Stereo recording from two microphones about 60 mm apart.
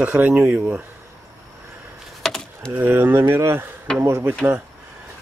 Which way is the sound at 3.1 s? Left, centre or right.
Right.